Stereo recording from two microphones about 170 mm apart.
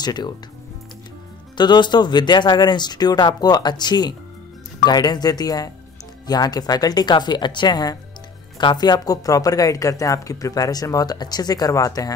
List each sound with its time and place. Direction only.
0.0 s speech: 25° left (ahead or behind)
1.6 s speech: 25° left (ahead or behind)